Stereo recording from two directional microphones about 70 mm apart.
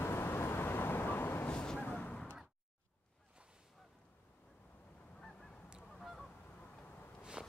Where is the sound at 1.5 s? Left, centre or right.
Centre.